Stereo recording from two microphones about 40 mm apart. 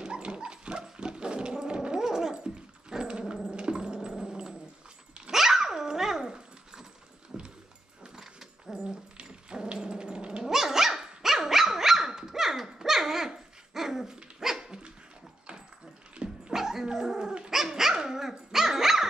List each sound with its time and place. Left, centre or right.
0.0 s dog: right
3.4 s a sound: right
4.2 s dog: centre
8.7 s dog: right
10.4 s dog: centre
16.2 s dog: right
16.5 s dog: centre